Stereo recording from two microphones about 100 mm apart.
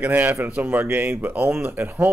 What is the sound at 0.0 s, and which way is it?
Speech, 20° right (ahead or behind).